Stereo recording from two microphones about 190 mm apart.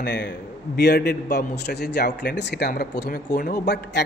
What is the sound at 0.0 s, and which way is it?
A man's voice, 60° left (ahead or behind).